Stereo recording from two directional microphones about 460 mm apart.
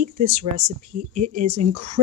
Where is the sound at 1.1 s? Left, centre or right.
Right.